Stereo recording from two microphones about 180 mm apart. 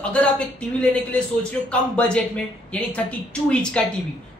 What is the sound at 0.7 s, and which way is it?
Speech, 5° left (ahead or behind).